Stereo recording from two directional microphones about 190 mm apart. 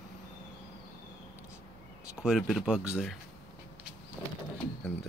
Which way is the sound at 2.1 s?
5° right (ahead or behind).